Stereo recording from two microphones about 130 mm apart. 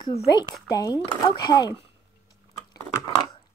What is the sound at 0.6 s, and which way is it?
Speech, 30° left (ahead or behind).